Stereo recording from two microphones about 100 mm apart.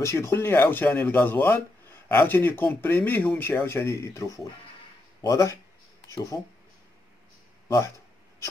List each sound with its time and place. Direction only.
0.0 s speech: 30° left (ahead or behind)
7.6 s speech: 30° left (ahead or behind)